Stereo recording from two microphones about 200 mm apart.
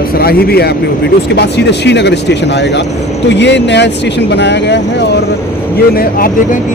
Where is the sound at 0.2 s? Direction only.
50° left (ahead or behind).